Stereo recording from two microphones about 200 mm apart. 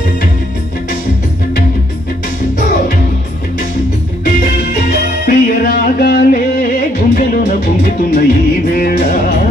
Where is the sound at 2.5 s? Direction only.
45° left (ahead or behind).